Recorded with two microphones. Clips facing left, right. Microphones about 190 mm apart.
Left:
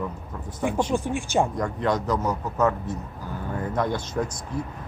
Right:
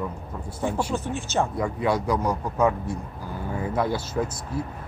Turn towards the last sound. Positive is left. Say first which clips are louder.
# right 1 dB
turn(degrees=-5)  # may be behind; listen again after turning